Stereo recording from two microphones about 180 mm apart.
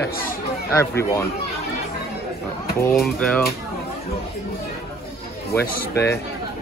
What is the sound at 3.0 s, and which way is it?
Speech, centre (ahead or behind).